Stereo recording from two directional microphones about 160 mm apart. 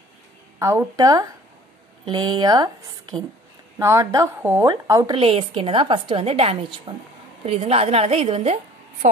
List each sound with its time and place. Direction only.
0.6 s a woman's voice: 15° right (ahead or behind)
5.1 s a woman's voice: 35° right (ahead or behind)
9.0 s a woman's voice: 50° right (ahead or behind)